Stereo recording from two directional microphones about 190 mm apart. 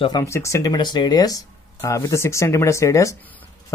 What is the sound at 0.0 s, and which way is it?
Speech, 20° left (ahead or behind).